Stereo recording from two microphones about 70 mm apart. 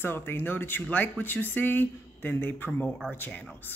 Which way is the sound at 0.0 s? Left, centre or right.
Left.